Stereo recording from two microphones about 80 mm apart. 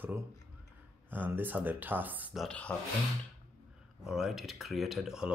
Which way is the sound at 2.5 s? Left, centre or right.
Centre.